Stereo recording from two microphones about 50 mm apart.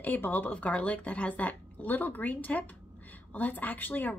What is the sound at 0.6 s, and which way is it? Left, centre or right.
A woman's voice, left.